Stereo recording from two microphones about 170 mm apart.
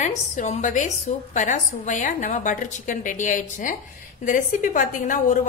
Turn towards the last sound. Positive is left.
turn(degrees=50)  # may be behind; listen again after turning